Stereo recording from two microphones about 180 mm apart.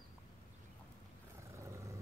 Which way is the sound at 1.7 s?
15° right (ahead or behind).